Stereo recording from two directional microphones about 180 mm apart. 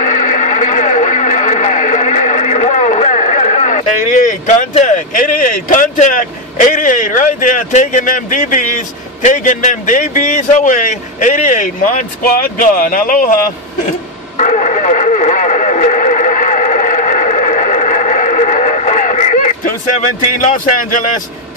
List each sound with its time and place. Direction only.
0.0 s radio: 45° left (ahead or behind)
6.7 s speech: 45° left (ahead or behind)
14.3 s radio: 40° left (ahead or behind)